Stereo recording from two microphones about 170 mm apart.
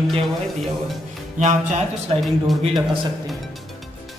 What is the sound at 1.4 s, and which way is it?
Speech, 40° right (ahead or behind).